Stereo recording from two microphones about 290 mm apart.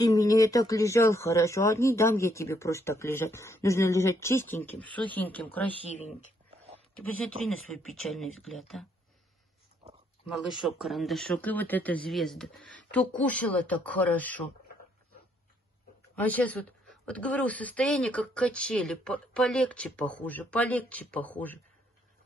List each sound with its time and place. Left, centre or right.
0.0 s speech: centre
5.7 s speech: left
8.0 s a woman's voice: centre
9.8 s dog: centre
10.3 s a woman's voice: centre
16.2 s a woman's voice: centre